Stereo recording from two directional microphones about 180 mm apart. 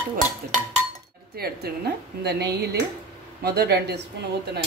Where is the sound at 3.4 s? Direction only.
60° right (ahead or behind).